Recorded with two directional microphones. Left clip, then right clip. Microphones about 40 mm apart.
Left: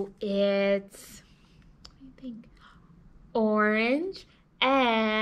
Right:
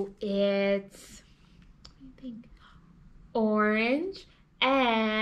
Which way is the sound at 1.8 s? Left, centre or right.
Left.